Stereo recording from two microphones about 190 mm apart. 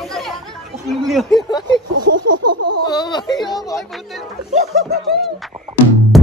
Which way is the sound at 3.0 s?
25° left (ahead or behind).